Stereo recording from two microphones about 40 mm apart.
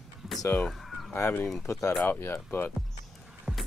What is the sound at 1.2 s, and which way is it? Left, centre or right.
Speech, left.